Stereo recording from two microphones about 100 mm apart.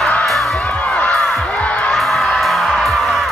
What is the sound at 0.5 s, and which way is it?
Music, 15° left (ahead or behind).